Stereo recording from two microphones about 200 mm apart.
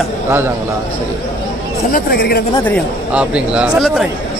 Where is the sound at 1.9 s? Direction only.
45° left (ahead or behind).